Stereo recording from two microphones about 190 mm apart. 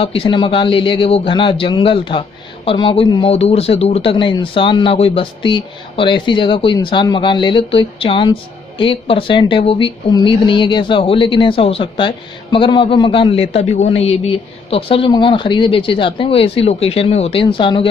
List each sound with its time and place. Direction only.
0.0 s speech: 30° left (ahead or behind)